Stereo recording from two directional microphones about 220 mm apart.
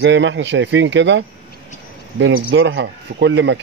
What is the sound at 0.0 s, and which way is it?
Speech, 55° right (ahead or behind).